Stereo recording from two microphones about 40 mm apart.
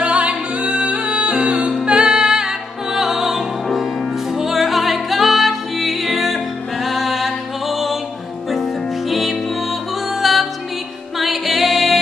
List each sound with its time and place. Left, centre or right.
0.0 s music: right; by 12.0 s centre